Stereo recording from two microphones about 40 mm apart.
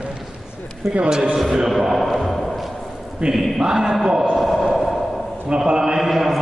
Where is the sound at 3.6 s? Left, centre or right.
Centre.